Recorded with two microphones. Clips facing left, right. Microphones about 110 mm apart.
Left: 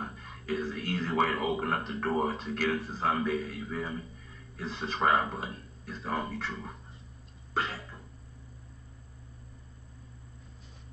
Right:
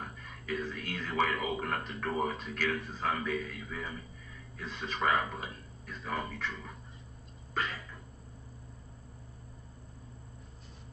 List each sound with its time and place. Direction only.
0.0 s speech: 35° left (ahead or behind)
7.5 s cough: 30° left (ahead or behind)